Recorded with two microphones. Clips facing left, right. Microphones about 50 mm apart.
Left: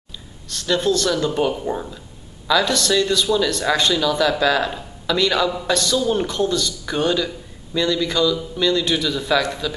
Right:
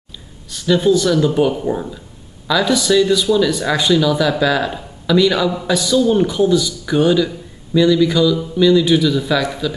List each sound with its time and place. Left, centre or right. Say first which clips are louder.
0.5 s speech: right 5 dB; centre